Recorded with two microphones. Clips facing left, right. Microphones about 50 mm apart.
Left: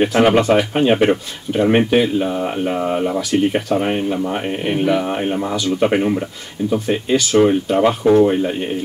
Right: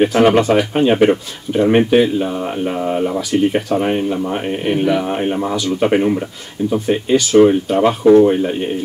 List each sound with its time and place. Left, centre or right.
0.0 s speech: centre